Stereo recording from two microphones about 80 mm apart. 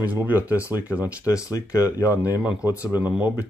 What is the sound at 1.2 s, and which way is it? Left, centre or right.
Speech, left.